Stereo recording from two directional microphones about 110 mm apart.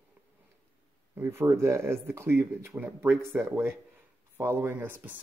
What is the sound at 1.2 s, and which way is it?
Speech, 25° right (ahead or behind).